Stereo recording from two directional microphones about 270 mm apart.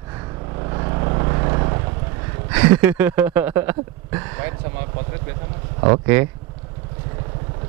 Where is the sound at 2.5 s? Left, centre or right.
Centre.